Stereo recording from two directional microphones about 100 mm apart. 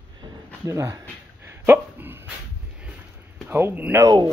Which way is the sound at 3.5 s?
20° right (ahead or behind).